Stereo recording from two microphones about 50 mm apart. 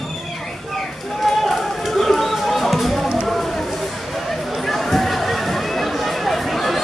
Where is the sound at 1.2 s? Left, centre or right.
Centre.